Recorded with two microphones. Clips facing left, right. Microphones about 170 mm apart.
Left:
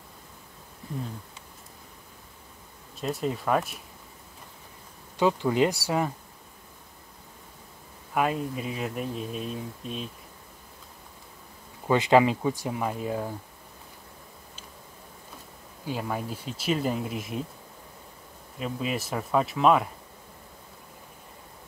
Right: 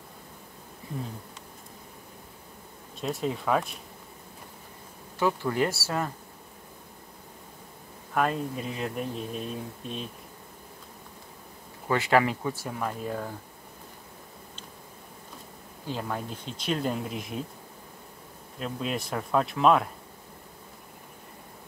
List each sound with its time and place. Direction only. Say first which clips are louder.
3.0 s speech: left 1 dB; centre (ahead or behind)
5.2 s speech: left 3 dB; 20° left (ahead or behind)
8.1 s speech: left 1 dB; 5° left (ahead or behind)
11.9 s speech: left 4 dB; 20° left (ahead or behind)
15.8 s speech: left 2 dB; 10° left (ahead or behind)
18.6 s speech: left 1 dB; 5° left (ahead or behind)